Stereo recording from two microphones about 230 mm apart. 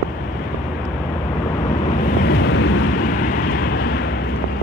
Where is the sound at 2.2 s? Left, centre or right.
Left.